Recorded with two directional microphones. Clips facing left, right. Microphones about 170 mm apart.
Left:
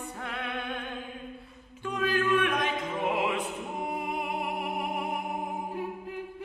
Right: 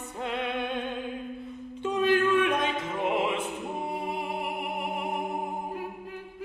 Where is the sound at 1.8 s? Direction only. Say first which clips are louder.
Right 5 dB; 25° right (ahead or behind).